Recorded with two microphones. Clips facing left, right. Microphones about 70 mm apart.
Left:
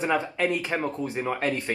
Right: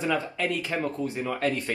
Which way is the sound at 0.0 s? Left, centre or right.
Left.